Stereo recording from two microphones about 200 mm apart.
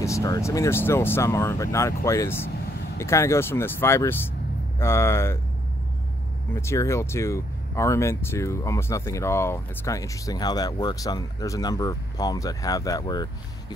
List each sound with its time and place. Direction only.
0.0 s speech: 15° left (ahead or behind)
6.5 s speech: 15° left (ahead or behind)